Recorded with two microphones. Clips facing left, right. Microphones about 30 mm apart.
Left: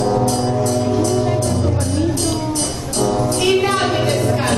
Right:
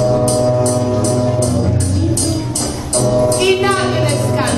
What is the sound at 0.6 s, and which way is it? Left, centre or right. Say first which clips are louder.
Music: right 3 dB; right.